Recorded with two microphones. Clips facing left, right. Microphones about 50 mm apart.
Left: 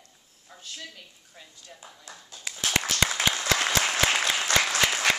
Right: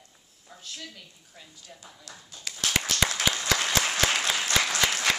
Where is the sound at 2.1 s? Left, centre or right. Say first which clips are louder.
Left 1 dB; left.